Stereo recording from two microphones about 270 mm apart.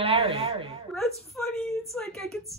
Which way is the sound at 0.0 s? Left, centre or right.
Right.